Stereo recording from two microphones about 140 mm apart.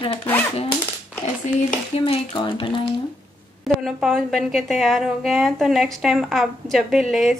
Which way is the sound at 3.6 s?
Centre (ahead or behind).